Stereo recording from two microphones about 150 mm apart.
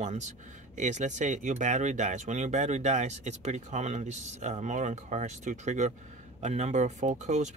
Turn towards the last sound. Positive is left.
turn(degrees=-50)  # may be behind; listen again after turning